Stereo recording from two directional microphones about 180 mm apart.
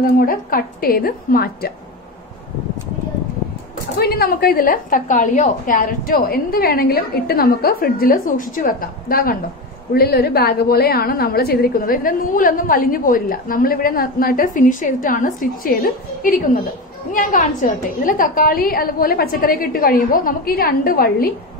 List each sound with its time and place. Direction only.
0.2 s a woman's voice: 55° left (ahead or behind)
4.0 s a woman's voice: 60° left (ahead or behind)